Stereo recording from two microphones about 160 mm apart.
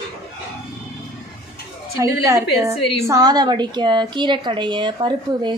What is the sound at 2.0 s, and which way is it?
A woman's voice, 20° right (ahead or behind).